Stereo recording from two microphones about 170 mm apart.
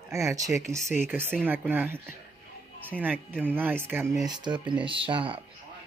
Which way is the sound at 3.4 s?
10° right (ahead or behind).